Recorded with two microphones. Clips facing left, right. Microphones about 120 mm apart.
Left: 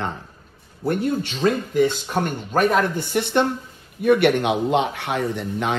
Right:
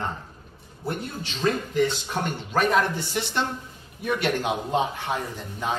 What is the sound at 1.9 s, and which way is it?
A man's voice, 45° left (ahead or behind).